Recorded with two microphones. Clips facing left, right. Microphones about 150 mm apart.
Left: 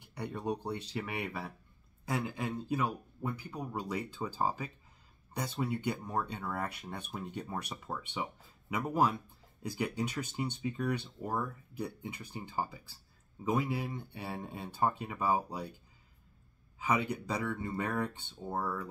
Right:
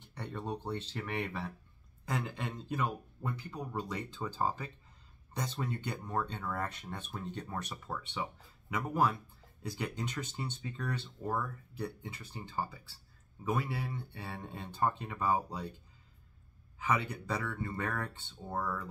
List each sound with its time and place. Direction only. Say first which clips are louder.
0.0 s speech: left 3 dB; 10° left (ahead or behind)
16.8 s speech: left 2 dB; 15° left (ahead or behind)